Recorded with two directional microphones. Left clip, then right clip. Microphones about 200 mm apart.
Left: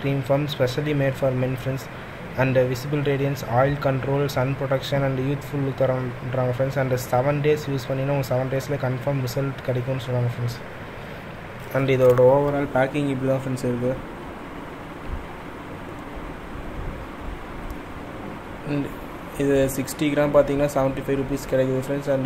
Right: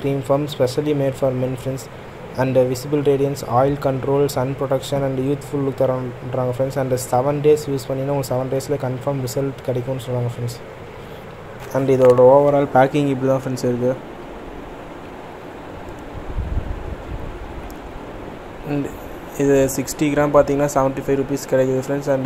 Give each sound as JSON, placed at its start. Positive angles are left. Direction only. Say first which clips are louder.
{"t": 0.0, "sound": "speech", "louder": "right 4 dB", "side_deg": -15}
{"t": 2.3, "sound": "speech", "louder": "right 4 dB", "side_deg": -15}
{"t": 12.0, "sound": "speech", "louder": "right 5 dB", "side_deg": 0}
{"t": 12.4, "sound": "speech", "louder": "right 7 dB", "side_deg": -15}
{"t": 19.3, "sound": "speech", "louder": "right 5 dB", "side_deg": -10}